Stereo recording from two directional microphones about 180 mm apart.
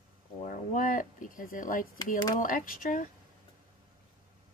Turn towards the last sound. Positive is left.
turn(degrees=45)  # may be behind; listen again after turning